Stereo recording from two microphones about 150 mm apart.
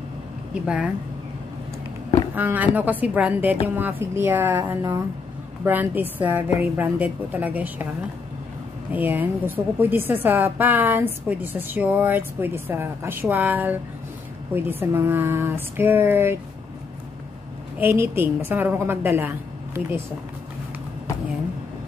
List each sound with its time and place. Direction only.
0.7 s a woman's voice: 10° right (ahead or behind)
2.3 s a woman's voice: 10° right (ahead or behind)
8.9 s a woman's voice: 10° right (ahead or behind)
17.7 s a woman's voice: 15° right (ahead or behind)